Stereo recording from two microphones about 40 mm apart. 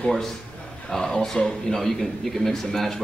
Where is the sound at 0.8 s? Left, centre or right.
Centre.